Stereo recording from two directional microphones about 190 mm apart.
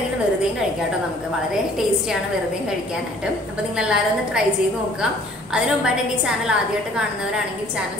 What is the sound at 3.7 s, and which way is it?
Speech, 5° right (ahead or behind).